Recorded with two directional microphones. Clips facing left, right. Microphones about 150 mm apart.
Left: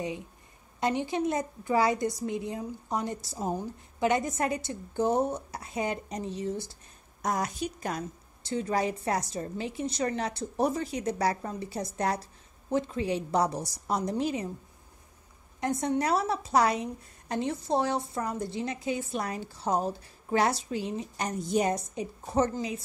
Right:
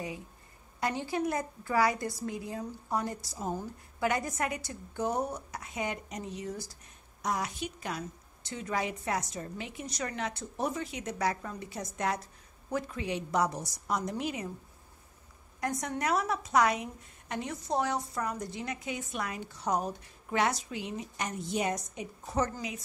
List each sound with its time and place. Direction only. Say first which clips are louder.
0.7 s a woman's voice: left 4 dB; 20° left (ahead or behind)
7.2 s a woman's voice: left 3 dB; 45° left (ahead or behind); by 14.5 s 30° left (ahead or behind)
15.6 s a woman's voice: left 5 dB; 25° left (ahead or behind)